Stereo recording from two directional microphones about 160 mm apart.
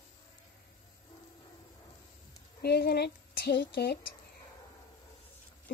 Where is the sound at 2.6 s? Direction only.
85° left.